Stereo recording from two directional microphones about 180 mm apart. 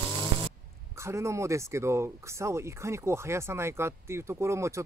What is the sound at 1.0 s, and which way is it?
Speech, 15° right (ahead or behind).